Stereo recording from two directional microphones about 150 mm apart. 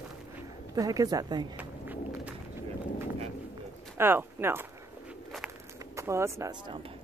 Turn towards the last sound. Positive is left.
turn(degrees=-20)  # may be behind; listen again after turning